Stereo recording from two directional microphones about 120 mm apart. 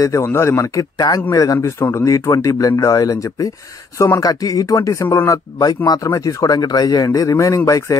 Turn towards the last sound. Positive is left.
turn(degrees=25)  # may be behind; listen again after turning